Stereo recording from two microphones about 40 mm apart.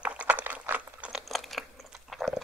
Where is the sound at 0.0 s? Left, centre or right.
Right.